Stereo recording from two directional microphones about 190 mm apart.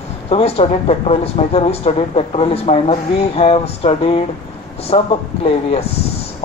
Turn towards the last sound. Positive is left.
turn(degrees=30)  # may be behind; listen again after turning